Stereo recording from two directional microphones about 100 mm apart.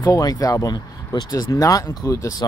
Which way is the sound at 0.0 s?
35° left (ahead or behind).